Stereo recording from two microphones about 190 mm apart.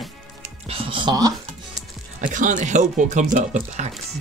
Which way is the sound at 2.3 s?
40° right (ahead or behind).